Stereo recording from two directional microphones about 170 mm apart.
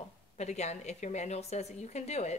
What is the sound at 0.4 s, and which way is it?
Speech, 40° left (ahead or behind).